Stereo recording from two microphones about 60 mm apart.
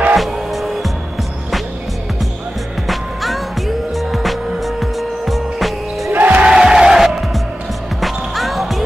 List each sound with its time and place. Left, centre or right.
0.1 s music: centre
2.9 s music: centre
6.1 s music: right
6.5 s music: centre